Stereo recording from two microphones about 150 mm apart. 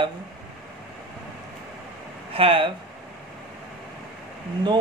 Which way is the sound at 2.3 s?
35° right (ahead or behind).